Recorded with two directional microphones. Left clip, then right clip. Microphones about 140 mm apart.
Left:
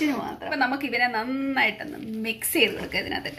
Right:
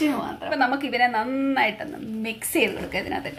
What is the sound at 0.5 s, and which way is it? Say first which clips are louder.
A woman's voice: right 2 dB; 15° right (ahead or behind).